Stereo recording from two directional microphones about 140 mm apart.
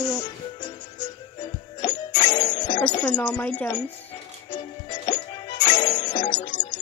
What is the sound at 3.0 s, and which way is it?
Speech, 5° left (ahead or behind).